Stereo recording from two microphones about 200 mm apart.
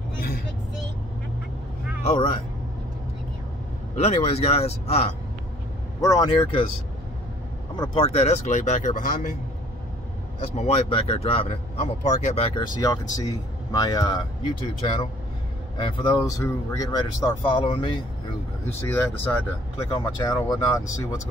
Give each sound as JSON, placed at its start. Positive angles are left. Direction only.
{"t": 2.0, "sound": "speech", "side_deg": 30}
{"t": 3.9, "sound": "speech", "side_deg": 30}
{"t": 5.9, "sound": "speech", "side_deg": 20}
{"t": 7.7, "sound": "speech", "side_deg": 25}
{"t": 10.5, "sound": "speech", "side_deg": 30}
{"t": 12.5, "sound": "speech", "side_deg": 20}
{"t": 18.7, "sound": "speech", "side_deg": 10}